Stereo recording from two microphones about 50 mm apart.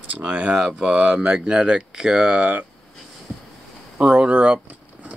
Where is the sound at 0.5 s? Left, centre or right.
Centre.